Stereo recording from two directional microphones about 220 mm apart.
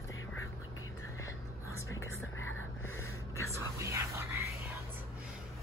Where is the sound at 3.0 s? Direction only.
15° left (ahead or behind).